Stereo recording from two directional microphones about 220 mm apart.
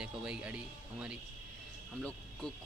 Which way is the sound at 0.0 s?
5° right (ahead or behind).